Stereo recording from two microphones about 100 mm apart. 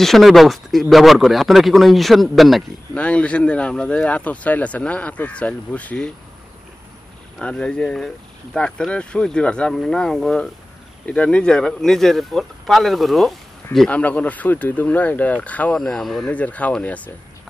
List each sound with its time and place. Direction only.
0.0 s speech: centre (ahead or behind)
2.9 s speech: 10° left (ahead or behind)
7.3 s speech: 10° left (ahead or behind)
13.8 s speech: 15° left (ahead or behind)
15.7 s speech: 5° left (ahead or behind)
16.3 s speech: 15° left (ahead or behind)